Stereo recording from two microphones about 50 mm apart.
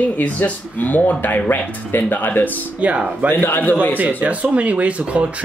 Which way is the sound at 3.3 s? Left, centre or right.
Left.